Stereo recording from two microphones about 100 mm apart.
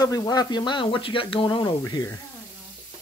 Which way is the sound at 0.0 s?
40° left (ahead or behind).